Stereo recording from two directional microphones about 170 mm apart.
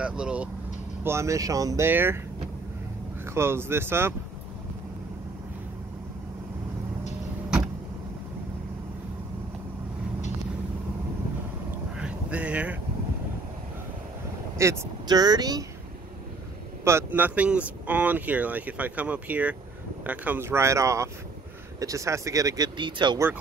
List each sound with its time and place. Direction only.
0.0 s speech: 5° right (ahead or behind)
1.0 s speech: 15° right (ahead or behind)
3.3 s speech: 15° right (ahead or behind)
12.0 s vehicle: 5° right (ahead or behind)
14.6 s speech: 15° right (ahead or behind)
16.8 s speech: 15° right (ahead or behind)